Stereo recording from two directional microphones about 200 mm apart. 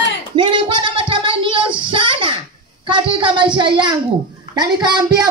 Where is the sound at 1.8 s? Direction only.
25° right (ahead or behind).